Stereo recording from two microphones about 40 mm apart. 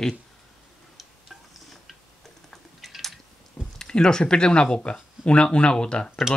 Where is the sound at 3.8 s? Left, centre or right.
Centre.